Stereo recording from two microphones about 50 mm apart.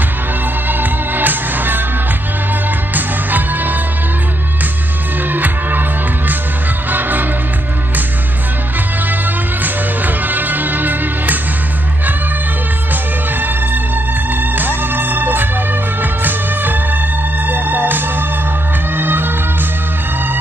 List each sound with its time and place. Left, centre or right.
0.7 s music: right
2.9 s music: right
5.3 s music: right
9.6 s music: right
14.5 s music: right